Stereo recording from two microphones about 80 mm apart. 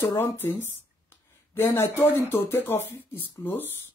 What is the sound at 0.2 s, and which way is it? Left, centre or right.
Speech, left.